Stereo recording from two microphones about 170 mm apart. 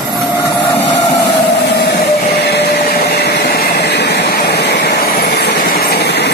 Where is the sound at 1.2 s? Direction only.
75° left (ahead or behind).